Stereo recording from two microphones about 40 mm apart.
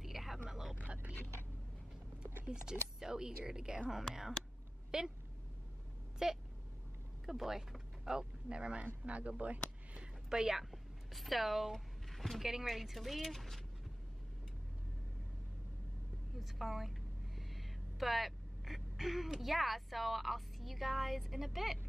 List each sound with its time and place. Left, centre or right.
0.0 s a sound: centre
0.5 s vehicle: centre
2.4 s speech: centre
4.9 s speech: centre
6.2 s speech: centre; by 10.0 s right
10.3 s speech: centre
10.6 s speech: centre
16.3 s a woman's voice: centre